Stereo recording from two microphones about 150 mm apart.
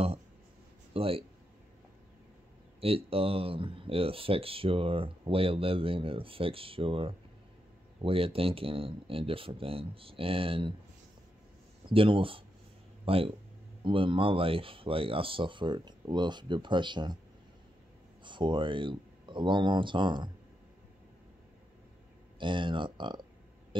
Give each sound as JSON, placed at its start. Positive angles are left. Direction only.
{"t": 0.9, "sound": "speech", "side_deg": -40}
{"t": 2.8, "sound": "speech", "side_deg": -40}
{"t": 11.9, "sound": "speech", "side_deg": -35}
{"t": 18.2, "sound": "speech", "side_deg": -30}
{"t": 22.4, "sound": "speech", "side_deg": -35}